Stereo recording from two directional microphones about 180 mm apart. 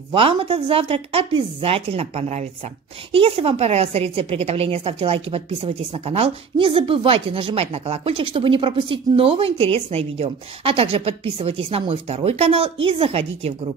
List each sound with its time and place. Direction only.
0.1 s a woman's voice: 30° right (ahead or behind)